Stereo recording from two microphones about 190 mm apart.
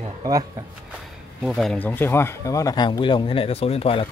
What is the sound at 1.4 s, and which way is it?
Speech, centre (ahead or behind).